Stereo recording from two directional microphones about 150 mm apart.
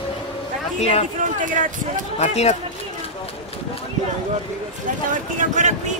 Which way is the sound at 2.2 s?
45° left (ahead or behind).